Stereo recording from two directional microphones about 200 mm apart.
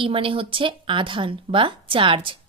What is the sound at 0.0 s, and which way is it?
Speech, 25° right (ahead or behind).